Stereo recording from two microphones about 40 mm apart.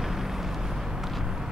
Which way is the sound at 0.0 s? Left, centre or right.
Centre.